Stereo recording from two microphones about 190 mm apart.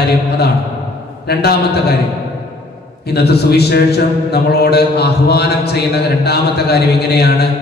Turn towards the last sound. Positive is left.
turn(degrees=60)  # may be behind; listen again after turning